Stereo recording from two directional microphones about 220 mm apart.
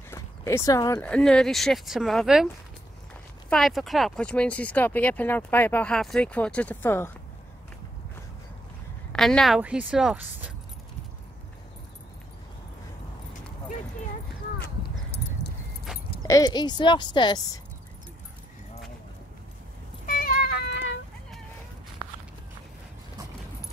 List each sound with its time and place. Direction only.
0.1 s speech: 10° left (ahead or behind)
3.4 s speech: centre (ahead or behind)
9.1 s speech: 5° left (ahead or behind)
16.2 s speech: 15° left (ahead or behind)
20.1 s a sound: 40° left (ahead or behind)